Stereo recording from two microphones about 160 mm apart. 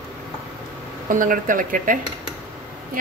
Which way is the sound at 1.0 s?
60° right (ahead or behind).